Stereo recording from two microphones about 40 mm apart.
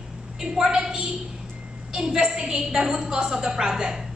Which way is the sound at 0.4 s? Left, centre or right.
Centre.